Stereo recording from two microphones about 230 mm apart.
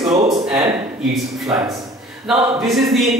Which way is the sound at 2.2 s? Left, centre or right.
Centre.